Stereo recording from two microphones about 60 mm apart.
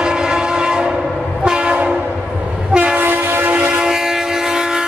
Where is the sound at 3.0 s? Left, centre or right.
Right.